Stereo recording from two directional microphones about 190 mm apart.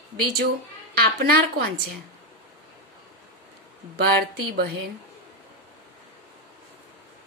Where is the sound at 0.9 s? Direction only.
55° right (ahead or behind).